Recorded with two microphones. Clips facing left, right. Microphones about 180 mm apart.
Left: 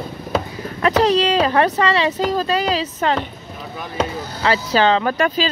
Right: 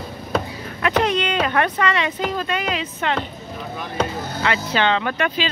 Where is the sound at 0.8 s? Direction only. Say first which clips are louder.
Left 4 dB; 35° left (ahead or behind).